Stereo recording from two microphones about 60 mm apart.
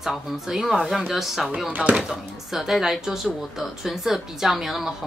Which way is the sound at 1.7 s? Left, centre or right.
Right.